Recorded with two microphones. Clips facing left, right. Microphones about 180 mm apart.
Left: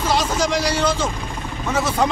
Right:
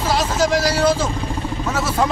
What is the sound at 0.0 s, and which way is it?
A man's voice, centre (ahead or behind).